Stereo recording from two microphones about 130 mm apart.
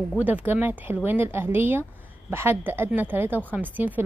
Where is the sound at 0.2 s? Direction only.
15° right (ahead or behind).